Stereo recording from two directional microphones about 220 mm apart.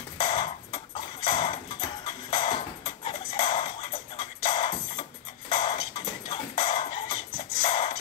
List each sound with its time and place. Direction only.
0.2 s ping: 20° left (ahead or behind)
1.2 s clip-clop: 25° left (ahead or behind)
2.3 s music: 20° left (ahead or behind)